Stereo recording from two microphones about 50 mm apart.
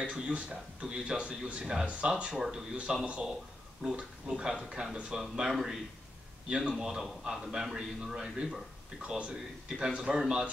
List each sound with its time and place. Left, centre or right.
0.0 s a man's voice: right